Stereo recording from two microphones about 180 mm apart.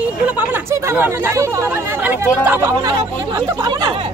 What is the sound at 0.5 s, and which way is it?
Speech, 10° right (ahead or behind).